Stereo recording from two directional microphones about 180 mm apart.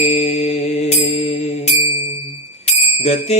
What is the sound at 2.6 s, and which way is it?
Bicycle bell, 35° left (ahead or behind).